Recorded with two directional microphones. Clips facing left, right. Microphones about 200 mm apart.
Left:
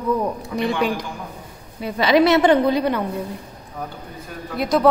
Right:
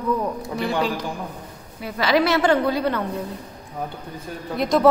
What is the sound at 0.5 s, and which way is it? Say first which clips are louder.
Speech: left 4 dB; 20° left (ahead or behind).